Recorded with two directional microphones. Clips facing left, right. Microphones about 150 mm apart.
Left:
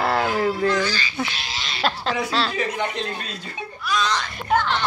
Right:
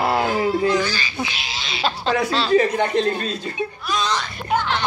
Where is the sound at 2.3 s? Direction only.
5° left (ahead or behind).